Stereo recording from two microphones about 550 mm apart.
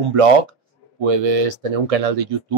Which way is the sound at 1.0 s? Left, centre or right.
Right.